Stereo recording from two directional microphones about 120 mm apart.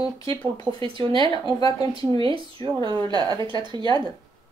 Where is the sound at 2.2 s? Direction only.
45° right (ahead or behind).